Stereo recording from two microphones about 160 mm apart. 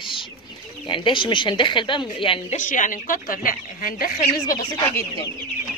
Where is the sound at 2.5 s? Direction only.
50° left (ahead or behind).